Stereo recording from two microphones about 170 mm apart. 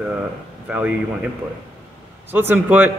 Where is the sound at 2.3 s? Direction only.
10° right (ahead or behind).